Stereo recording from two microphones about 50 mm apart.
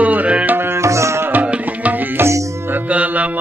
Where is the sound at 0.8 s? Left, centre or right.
Right.